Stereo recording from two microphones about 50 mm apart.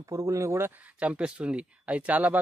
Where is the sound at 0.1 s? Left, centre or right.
Right.